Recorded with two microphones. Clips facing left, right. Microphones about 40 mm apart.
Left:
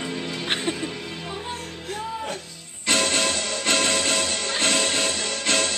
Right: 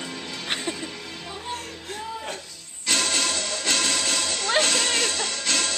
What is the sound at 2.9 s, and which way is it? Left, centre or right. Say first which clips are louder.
Music: left 3 dB; left.